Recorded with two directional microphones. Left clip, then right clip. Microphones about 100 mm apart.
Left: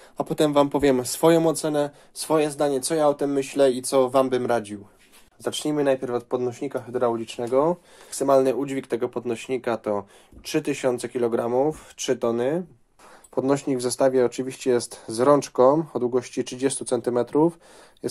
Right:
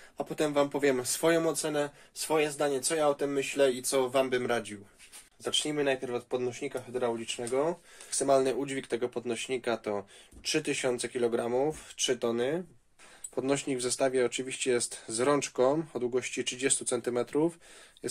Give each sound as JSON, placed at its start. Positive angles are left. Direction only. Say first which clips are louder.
{"t": 0.2, "sound": "speech", "louder": "left 8 dB", "side_deg": 90}
{"t": 5.4, "sound": "speech", "louder": "left 5 dB", "side_deg": 60}
{"t": 8.1, "sound": "speech", "louder": "left 7 dB", "side_deg": 35}
{"t": 11.7, "sound": "speech", "louder": "left 5 dB", "side_deg": 35}
{"t": 13.3, "sound": "speech", "louder": "left 7 dB", "side_deg": 25}